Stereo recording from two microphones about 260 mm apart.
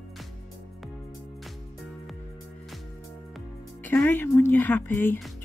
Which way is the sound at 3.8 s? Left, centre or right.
Centre.